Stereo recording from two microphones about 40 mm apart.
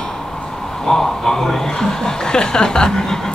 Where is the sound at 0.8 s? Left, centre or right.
Centre.